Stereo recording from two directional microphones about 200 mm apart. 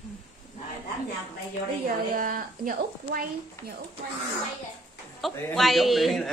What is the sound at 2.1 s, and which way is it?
Speech, 45° right (ahead or behind).